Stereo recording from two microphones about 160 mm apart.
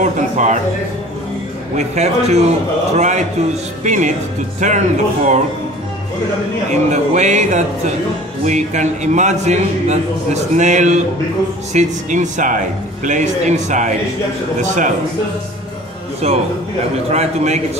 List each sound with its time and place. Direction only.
0.0 s a man's voice: 50° right (ahead or behind)
1.8 s a man's voice: 45° right (ahead or behind)
6.7 s a man's voice: 45° right (ahead or behind)
16.2 s a man's voice: 40° right (ahead or behind)